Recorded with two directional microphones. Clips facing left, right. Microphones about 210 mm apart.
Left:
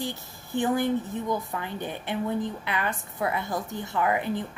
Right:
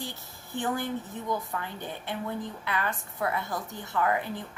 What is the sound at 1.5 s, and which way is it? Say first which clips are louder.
A woman's voice: left 3 dB; 15° left (ahead or behind).